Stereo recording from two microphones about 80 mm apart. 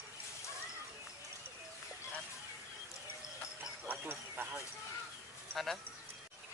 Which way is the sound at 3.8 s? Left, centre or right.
Right.